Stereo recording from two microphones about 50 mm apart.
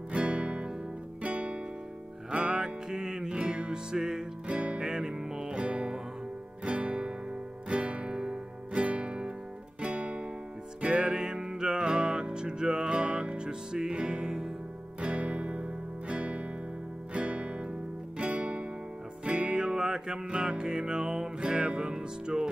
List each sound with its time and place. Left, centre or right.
0.1 s music: right